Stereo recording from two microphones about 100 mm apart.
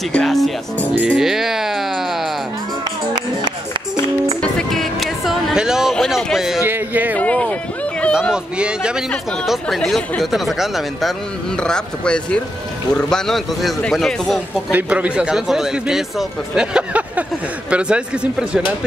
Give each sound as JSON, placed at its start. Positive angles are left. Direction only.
{"t": 0.1, "sound": "speech", "side_deg": 5}
{"t": 0.9, "sound": "music", "side_deg": -5}
{"t": 4.4, "sound": "music", "side_deg": 5}
{"t": 5.9, "sound": "speech", "side_deg": 5}
{"t": 6.6, "sound": "a man's voice", "side_deg": -20}
{"t": 7.2, "sound": "speech", "side_deg": 15}
{"t": 8.3, "sound": "a man's voice", "side_deg": -10}
{"t": 9.5, "sound": "speech", "side_deg": 5}
{"t": 14.7, "sound": "a man's voice", "side_deg": -15}